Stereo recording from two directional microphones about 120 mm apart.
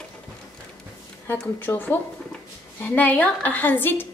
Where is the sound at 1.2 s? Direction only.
15° left (ahead or behind).